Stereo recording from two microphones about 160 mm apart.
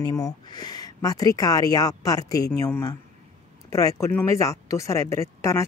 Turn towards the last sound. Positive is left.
turn(degrees=20)  # may be behind; listen again after turning